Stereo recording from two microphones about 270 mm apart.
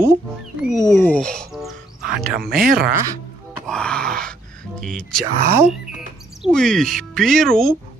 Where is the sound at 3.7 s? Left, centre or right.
Centre.